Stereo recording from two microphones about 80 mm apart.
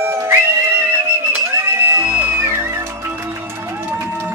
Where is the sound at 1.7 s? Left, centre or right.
Right.